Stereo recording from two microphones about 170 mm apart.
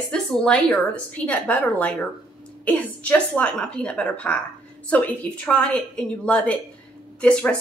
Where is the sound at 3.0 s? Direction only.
10° left (ahead or behind).